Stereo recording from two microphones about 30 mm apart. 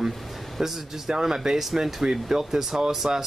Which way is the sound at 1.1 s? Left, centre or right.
Centre.